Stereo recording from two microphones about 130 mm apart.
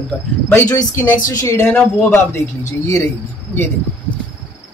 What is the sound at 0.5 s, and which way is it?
Speech, 20° left (ahead or behind).